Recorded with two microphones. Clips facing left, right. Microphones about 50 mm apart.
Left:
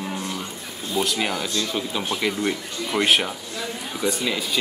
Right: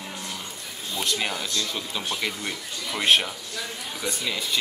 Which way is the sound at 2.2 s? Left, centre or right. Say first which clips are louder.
Left 6 dB; centre.